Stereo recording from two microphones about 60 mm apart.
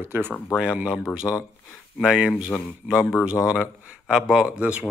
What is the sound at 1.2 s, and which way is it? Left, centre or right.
Speech, left.